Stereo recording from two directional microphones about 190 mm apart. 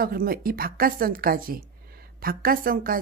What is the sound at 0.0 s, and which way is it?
A woman's voice, 50° right (ahead or behind).